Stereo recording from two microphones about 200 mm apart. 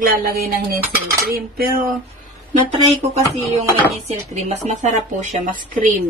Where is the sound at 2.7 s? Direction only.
30° right (ahead or behind).